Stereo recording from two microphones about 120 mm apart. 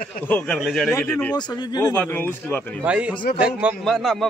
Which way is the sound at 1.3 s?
35° left (ahead or behind).